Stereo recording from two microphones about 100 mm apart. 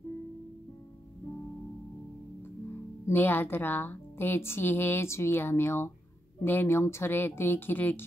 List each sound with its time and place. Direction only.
3.1 s a woman's voice: 20° left (ahead or behind)